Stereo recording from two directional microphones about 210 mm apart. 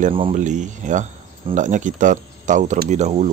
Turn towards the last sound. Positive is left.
turn(degrees=-30)  # may be behind; listen again after turning